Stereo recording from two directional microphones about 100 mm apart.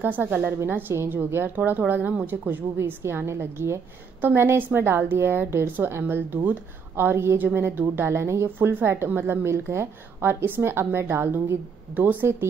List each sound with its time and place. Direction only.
0.0 s a woman's voice: 20° right (ahead or behind)